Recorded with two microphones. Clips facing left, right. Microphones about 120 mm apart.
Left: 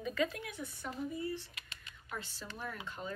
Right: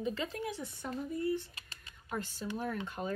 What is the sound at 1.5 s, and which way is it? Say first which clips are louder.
Typing: even; 35° right (ahead or behind).